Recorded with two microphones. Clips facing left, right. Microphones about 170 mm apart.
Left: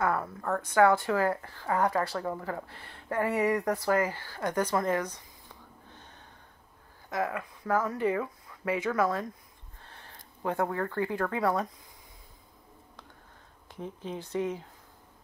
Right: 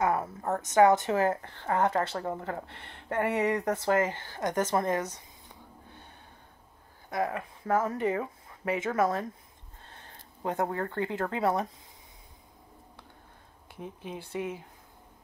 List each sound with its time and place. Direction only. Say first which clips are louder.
0.0 s a woman's voice: right 1 dB; 20° right (ahead or behind)
7.3 s a woman's voice: right 1 dB; 25° right (ahead or behind)
10.4 s a woman's voice: left 1 dB; 25° right (ahead or behind)
13.7 s speech: left 2 dB; 15° right (ahead or behind)